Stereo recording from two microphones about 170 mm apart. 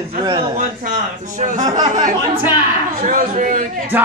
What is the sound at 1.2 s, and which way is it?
A man's voice, 45° right (ahead or behind).